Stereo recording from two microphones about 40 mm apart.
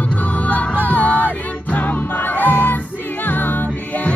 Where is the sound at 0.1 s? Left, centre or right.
Left.